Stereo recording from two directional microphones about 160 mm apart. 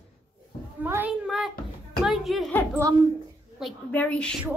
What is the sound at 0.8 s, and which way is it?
A child's voice, 10° right (ahead or behind).